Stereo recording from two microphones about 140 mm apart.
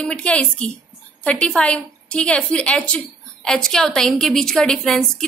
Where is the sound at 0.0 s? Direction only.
10° left (ahead or behind).